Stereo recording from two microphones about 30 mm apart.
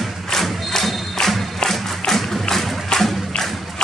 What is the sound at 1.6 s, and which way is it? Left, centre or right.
Music, centre.